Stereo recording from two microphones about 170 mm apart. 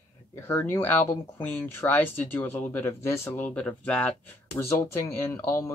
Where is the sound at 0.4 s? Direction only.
15° left (ahead or behind).